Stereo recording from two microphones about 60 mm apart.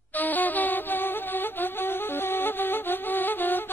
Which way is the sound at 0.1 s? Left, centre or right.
Left.